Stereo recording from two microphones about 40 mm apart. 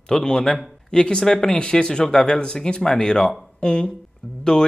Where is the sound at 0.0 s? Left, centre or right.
Centre.